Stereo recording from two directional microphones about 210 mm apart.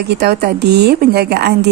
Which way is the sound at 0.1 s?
50° right (ahead or behind).